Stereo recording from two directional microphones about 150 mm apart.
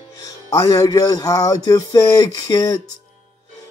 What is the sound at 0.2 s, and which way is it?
Speech, 20° left (ahead or behind).